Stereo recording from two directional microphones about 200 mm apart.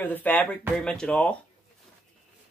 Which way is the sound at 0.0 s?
10° left (ahead or behind).